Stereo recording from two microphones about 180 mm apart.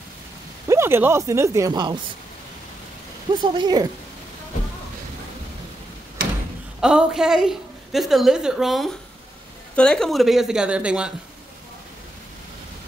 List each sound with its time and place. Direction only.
0.7 s speech: 15° right (ahead or behind)
3.3 s speech: 25° right (ahead or behind)
6.8 s a woman's voice: 5° right (ahead or behind)